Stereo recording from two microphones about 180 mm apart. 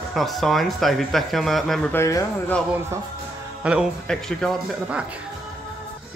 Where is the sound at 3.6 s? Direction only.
5° right (ahead or behind).